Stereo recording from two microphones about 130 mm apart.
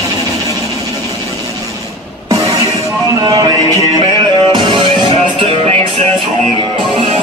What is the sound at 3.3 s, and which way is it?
Music, 30° right (ahead or behind).